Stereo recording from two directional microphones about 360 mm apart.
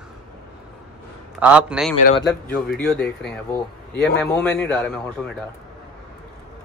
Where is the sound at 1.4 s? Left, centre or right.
Centre.